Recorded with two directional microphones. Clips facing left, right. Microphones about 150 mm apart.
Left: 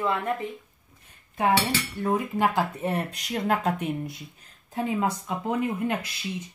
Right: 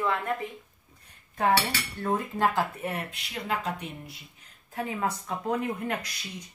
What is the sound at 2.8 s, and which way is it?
Speech, 35° left (ahead or behind).